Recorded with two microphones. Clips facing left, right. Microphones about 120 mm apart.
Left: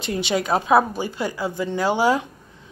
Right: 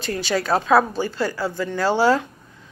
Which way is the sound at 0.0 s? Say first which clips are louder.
Even; 20° left (ahead or behind).